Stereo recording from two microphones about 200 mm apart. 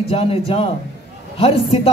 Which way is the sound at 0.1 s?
30° left (ahead or behind).